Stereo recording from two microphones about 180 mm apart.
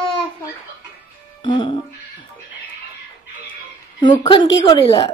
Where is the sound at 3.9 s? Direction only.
25° left (ahead or behind).